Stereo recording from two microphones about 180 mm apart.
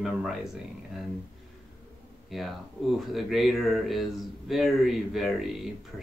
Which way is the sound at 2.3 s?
Centre (ahead or behind).